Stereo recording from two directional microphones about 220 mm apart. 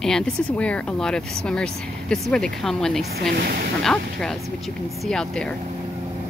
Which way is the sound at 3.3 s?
45° right (ahead or behind).